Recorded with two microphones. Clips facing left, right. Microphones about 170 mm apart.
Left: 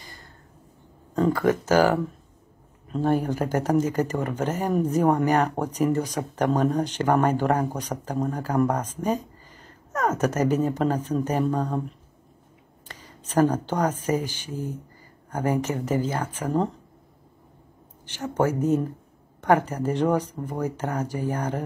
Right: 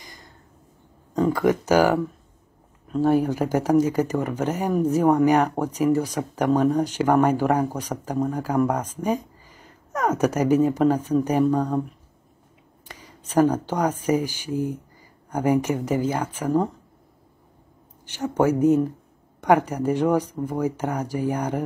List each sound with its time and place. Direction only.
0.0 s a sound: 15° right (ahead or behind)
1.3 s speech: 15° right (ahead or behind)
12.8 s speech: 10° right (ahead or behind)
18.0 s speech: 10° right (ahead or behind)